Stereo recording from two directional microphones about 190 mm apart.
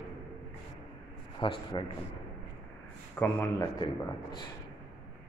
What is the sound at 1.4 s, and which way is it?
Speech, 25° left (ahead or behind).